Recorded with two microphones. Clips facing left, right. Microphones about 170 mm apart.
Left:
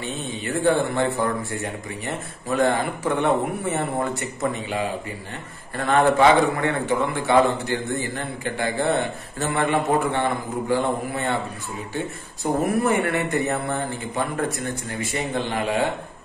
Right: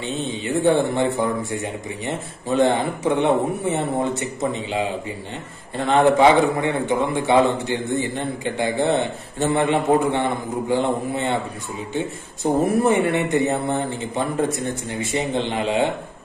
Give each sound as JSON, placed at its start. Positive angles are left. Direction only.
{"t": 0.0, "sound": "a man's voice", "side_deg": -20}
{"t": 12.6, "sound": "a man's voice", "side_deg": -25}